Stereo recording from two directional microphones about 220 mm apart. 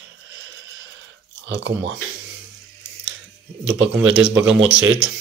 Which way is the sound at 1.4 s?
50° right (ahead or behind).